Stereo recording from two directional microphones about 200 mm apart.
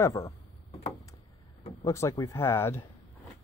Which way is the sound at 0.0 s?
15° left (ahead or behind).